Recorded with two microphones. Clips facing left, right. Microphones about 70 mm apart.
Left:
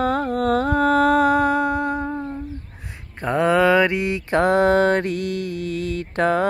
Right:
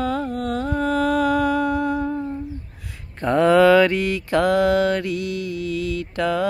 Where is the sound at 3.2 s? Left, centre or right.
Centre.